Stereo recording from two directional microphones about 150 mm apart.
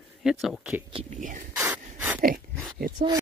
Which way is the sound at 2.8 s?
80° right.